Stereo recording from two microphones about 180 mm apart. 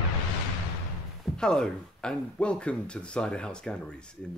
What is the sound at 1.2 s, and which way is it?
Speech, 5° left (ahead or behind).